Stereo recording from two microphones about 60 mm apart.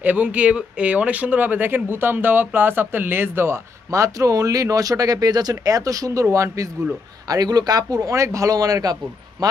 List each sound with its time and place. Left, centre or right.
0.0 s speech: right
3.9 s speech: right
6.3 s speech: right
7.2 s speech: right